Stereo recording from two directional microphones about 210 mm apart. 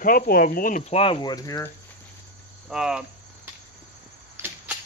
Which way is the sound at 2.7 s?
5° right (ahead or behind).